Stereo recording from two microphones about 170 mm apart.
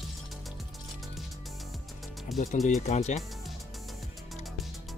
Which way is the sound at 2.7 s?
40° left (ahead or behind).